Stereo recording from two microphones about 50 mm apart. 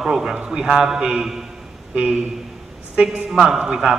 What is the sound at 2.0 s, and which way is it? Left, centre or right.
Speech, right.